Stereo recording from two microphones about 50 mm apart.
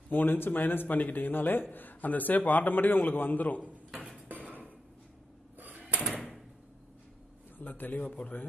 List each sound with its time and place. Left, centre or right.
0.1 s speech: left
4.3 s dishes: right
5.6 s drawer open or close: right
7.5 s speech: left